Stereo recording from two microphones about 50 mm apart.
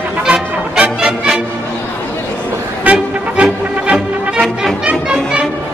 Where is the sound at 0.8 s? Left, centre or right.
Centre.